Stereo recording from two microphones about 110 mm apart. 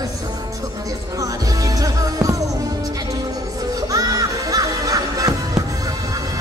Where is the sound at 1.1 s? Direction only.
30° right (ahead or behind).